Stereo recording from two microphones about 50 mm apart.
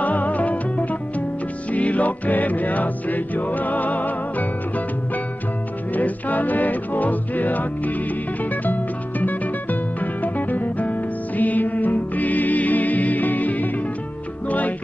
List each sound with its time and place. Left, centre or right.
0.0 s music: left